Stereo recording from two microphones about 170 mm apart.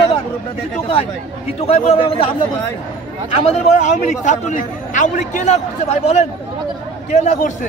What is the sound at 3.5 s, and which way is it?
A man's voice, 45° left (ahead or behind).